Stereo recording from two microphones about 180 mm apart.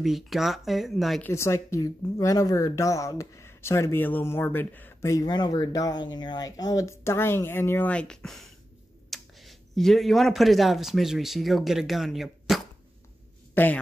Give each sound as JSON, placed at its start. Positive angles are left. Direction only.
{"t": 0.0, "sound": "speech", "side_deg": 0}
{"t": 1.2, "sound": "a woman's voice", "side_deg": 15}
{"t": 13.6, "sound": "a woman's voice", "side_deg": 10}